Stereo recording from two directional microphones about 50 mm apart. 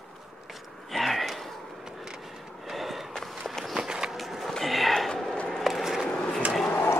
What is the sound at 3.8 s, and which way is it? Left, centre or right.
Walk, centre.